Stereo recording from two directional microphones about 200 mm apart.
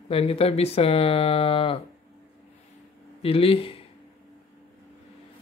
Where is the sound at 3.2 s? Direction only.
30° left (ahead or behind).